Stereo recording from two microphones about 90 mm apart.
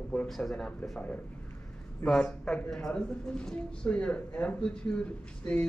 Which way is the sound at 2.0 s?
10° left (ahead or behind).